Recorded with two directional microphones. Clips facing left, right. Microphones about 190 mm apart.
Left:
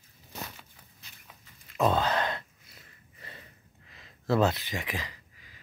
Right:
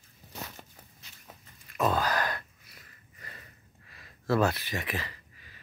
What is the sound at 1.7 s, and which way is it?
Sigh, 25° left (ahead or behind).